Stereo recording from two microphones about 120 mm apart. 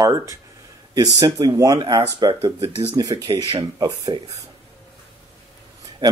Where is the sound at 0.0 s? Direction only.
30° right (ahead or behind).